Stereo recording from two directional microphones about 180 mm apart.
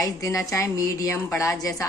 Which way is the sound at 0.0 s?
15° left (ahead or behind).